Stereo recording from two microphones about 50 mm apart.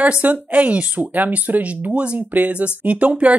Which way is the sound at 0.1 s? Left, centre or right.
Right.